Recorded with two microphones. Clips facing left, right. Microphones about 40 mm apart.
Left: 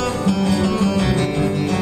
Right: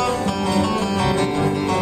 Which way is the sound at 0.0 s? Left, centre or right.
Centre.